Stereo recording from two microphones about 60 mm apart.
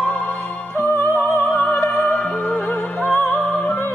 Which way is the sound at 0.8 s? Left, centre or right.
Left.